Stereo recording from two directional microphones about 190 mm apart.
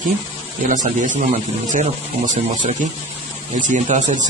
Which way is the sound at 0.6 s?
40° right (ahead or behind).